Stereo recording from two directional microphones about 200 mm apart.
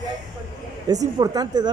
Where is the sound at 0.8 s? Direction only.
20° right (ahead or behind).